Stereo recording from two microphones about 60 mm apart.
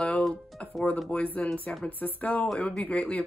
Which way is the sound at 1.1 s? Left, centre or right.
Left.